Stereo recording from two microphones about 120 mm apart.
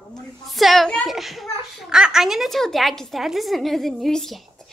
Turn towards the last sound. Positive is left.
turn(degrees=0)  # may be behind; listen again after turning